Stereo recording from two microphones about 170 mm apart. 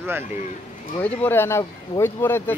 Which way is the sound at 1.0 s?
10° left (ahead or behind).